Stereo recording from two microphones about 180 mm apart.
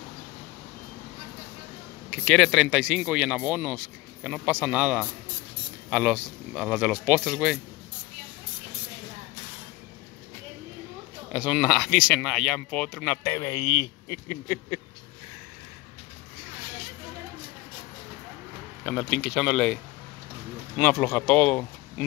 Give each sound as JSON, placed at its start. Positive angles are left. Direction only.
{"t": 2.0, "sound": "speech", "side_deg": 5}
{"t": 11.3, "sound": "speech", "side_deg": 0}
{"t": 13.3, "sound": "speech", "side_deg": 20}
{"t": 18.9, "sound": "speech", "side_deg": 5}